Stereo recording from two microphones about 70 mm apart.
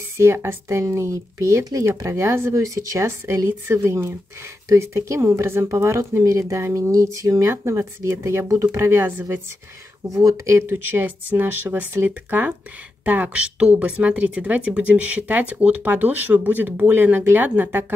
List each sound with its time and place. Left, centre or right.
0.2 s speech: right
10.0 s speech: right
10.7 s speech: right